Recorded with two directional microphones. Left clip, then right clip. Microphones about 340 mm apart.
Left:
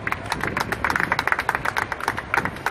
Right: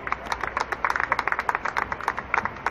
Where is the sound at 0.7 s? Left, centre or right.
Left.